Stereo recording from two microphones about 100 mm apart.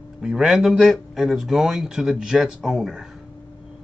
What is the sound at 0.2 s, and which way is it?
Speech, 5° right (ahead or behind).